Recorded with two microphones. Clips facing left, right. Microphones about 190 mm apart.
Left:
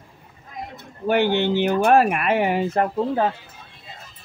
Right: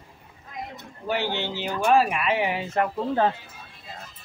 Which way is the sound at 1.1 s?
60° left (ahead or behind).